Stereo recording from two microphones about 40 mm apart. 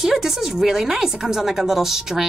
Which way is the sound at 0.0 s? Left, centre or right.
Centre.